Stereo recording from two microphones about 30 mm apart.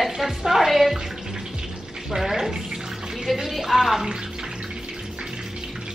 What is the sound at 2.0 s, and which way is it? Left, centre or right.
Speech, centre.